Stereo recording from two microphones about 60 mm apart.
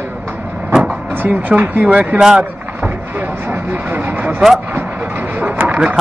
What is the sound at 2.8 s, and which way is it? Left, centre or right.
Vehicle, right.